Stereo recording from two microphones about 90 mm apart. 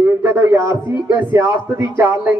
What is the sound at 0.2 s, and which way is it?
A man's voice, 25° right (ahead or behind).